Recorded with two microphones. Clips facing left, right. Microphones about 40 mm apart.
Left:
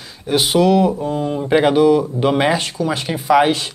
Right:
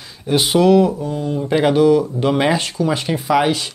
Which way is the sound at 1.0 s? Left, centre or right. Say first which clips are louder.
Left 1 dB; left.